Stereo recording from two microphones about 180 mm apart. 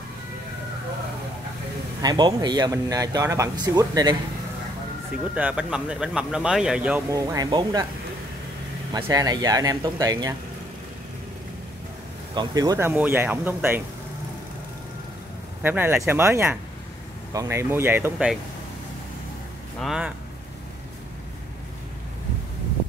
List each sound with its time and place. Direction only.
2.0 s speech: 25° right (ahead or behind)
5.3 s speech: 5° right (ahead or behind)
7.2 s speech: 20° right (ahead or behind)
8.9 s speech: 20° right (ahead or behind)
12.4 s speech: 20° right (ahead or behind)
15.6 s speech: 10° right (ahead or behind)
19.8 s speech: centre (ahead or behind)